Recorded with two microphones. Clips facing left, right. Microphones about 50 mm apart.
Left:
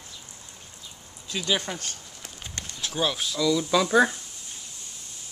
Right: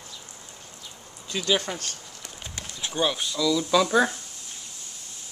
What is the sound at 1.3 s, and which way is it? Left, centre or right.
Speech, centre.